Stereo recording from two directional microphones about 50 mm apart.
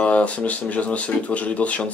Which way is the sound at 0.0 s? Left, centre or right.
Left.